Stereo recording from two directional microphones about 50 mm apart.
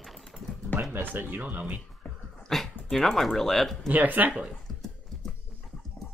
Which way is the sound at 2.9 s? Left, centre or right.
Centre.